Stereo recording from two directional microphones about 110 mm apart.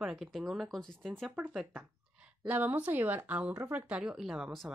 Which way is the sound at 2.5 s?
15° right (ahead or behind).